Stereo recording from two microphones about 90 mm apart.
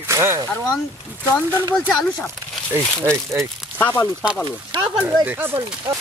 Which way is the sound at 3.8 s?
20° left (ahead or behind).